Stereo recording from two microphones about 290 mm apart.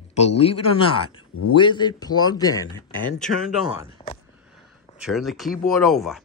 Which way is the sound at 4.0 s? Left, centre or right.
Centre.